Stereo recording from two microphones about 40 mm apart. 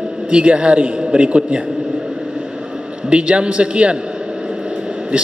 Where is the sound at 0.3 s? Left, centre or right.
Right.